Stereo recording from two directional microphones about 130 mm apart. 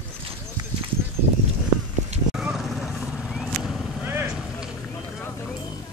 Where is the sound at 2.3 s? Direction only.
Centre (ahead or behind).